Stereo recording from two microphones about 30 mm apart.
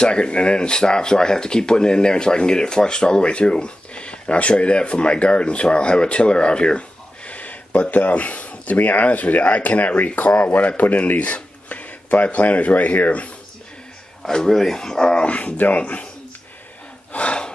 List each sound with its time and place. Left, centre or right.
0.0 s speech: left
14.3 s speech: centre
15.2 s speech: left
17.1 s gasp: left